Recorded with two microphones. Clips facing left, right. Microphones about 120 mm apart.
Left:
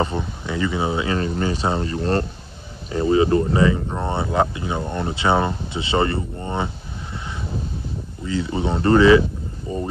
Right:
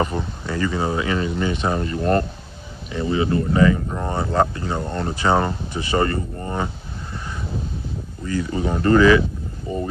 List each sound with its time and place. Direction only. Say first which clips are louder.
0.2 s speech: even; 15° left (ahead or behind)
1.1 s speech: even; 35° left (ahead or behind)
3.5 s speech: right 1 dB; 20° left (ahead or behind)
8.3 s speech: even; 25° left (ahead or behind)